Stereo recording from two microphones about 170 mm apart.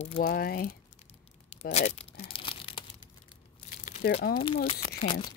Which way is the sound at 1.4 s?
40° left (ahead or behind).